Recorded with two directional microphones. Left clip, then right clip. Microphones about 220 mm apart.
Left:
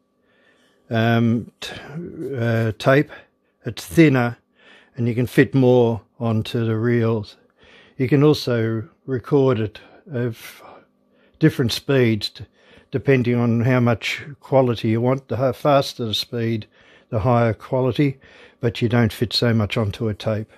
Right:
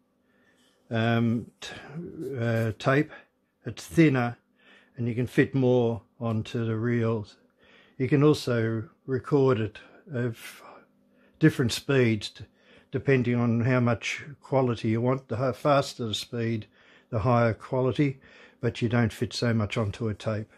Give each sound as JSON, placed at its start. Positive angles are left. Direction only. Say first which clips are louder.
{"t": 0.8, "sound": "speech", "louder": "left 7 dB", "side_deg": 45}